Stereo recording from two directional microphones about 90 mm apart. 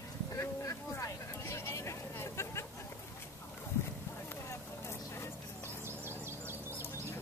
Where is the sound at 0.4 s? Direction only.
35° left (ahead or behind).